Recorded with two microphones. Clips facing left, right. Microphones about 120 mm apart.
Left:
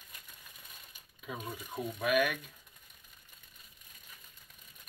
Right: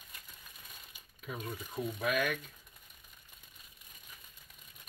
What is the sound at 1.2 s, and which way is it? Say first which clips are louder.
Speech: even; 10° left (ahead or behind).